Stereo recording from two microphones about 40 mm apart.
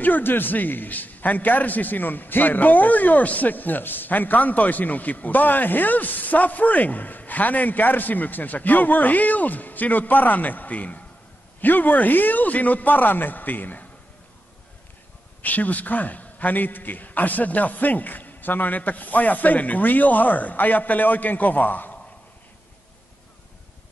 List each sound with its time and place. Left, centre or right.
0.0 s a man's voice: left
11.6 s a man's voice: left
15.4 s a man's voice: left